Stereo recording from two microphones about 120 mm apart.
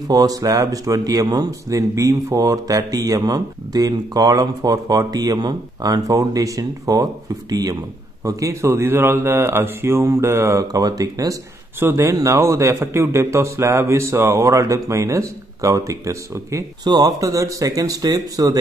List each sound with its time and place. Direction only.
0.1 s a man's voice: 30° right (ahead or behind)